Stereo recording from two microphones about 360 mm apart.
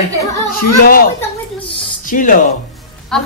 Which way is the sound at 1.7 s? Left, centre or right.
Left.